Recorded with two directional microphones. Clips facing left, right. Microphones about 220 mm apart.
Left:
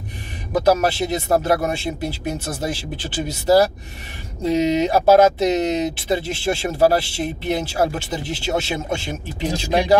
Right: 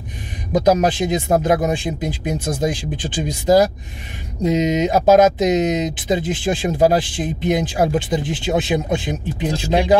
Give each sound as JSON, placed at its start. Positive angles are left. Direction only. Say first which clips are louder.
{"t": 0.5, "sound": "speech", "louder": "right 2 dB", "side_deg": -20}